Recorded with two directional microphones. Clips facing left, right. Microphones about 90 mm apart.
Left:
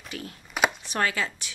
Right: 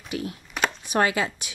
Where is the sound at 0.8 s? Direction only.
15° right (ahead or behind).